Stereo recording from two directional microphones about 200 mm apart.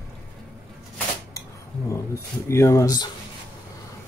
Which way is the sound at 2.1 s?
15° left (ahead or behind).